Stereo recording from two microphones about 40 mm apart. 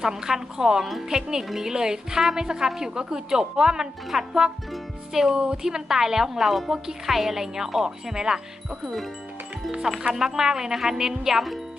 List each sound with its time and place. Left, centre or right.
0.0 s a woman's voice: centre
5.3 s a woman's voice: right
5.6 s a woman's voice: centre
10.1 s a woman's voice: centre